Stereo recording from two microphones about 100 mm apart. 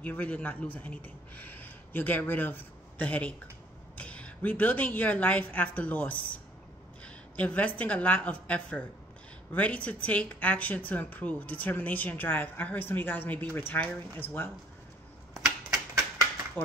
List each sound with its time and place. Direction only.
0.0 s a woman's voice: 15° left (ahead or behind)
15.3 s typewriter: 5° right (ahead or behind)
16.6 s speech: 20° left (ahead or behind)